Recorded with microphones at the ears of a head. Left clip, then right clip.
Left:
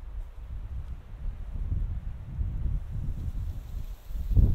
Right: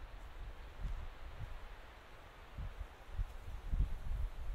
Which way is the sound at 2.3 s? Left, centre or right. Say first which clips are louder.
Left 8 dB; left.